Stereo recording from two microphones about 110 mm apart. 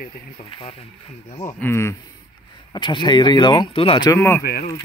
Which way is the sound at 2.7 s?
45° left (ahead or behind).